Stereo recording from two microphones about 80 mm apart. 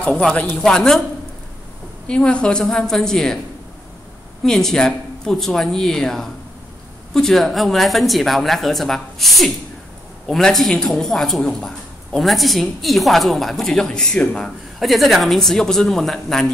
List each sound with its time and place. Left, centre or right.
0.0 s a woman's voice: centre
2.0 s a woman's voice: centre
4.5 s a woman's voice: centre